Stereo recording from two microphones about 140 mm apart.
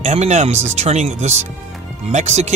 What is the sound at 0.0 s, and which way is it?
Speech, 55° right (ahead or behind).